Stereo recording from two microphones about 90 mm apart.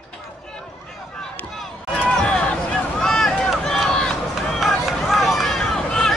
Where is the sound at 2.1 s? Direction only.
10° left (ahead or behind).